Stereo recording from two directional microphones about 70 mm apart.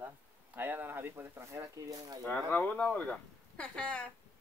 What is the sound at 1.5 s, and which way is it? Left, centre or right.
Speech, right.